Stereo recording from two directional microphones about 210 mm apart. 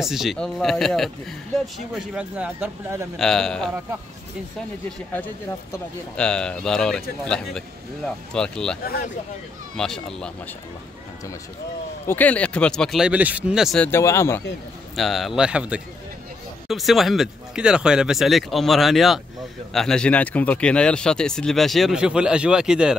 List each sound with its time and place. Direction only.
0.0 s a man's voice: centre (ahead or behind)
3.2 s a man's voice: centre (ahead or behind)
4.9 s a man's voice: 10° left (ahead or behind)
8.8 s speech: 45° left (ahead or behind)
9.8 s a man's voice: 5° left (ahead or behind)
12.1 s a man's voice: 5° left (ahead or behind)
13.8 s speech: 10° left (ahead or behind)
15.0 s a man's voice: centre (ahead or behind)